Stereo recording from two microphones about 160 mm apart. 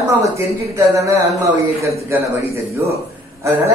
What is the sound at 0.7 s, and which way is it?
A man's voice, 20° right (ahead or behind).